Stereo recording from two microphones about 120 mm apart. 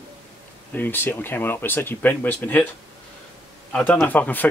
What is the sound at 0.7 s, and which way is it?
Speech, 15° left (ahead or behind).